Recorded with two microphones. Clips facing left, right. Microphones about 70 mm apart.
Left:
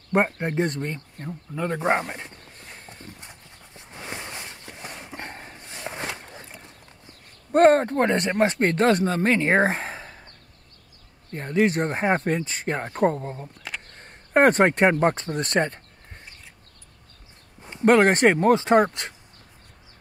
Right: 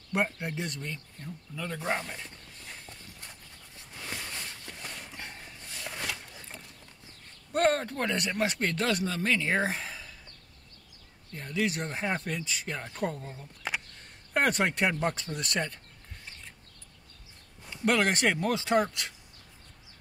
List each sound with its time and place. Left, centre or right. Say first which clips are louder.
0.1 s speech: left 8 dB; left
3.2 s horse: left 3 dB; left
5.1 s dog: left 7 dB; left
6.6 s speech: left 4 dB; left
13.6 s a sound: right 2 dB; centre
13.8 s a sound: left 5 dB; left
17.6 s speech: left 10 dB; left